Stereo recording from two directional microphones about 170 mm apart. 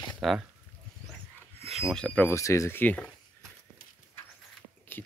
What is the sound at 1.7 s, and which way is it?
Speech, centre (ahead or behind).